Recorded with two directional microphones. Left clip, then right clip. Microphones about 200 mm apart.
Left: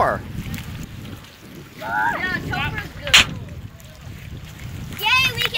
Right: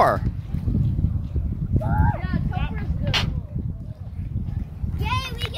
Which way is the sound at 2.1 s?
10° right (ahead or behind).